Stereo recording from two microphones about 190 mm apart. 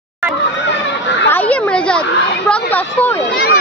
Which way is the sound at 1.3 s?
5° left (ahead or behind).